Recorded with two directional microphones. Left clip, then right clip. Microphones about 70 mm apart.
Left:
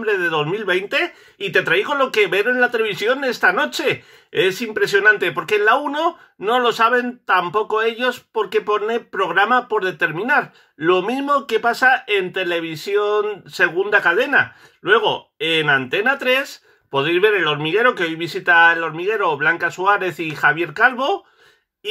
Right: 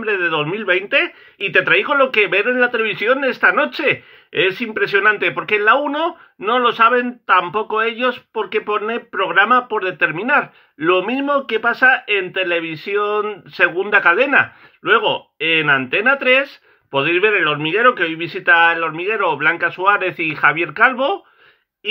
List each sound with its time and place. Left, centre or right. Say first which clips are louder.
0.0 s speech: right 1 dB; centre
0.6 s speech: right 3 dB; left
1.4 s speech: right 3 dB; left
13.7 s speech: right 3 dB; centre
14.1 s speech: right 2 dB; centre
14.9 s speech: right 1 dB; left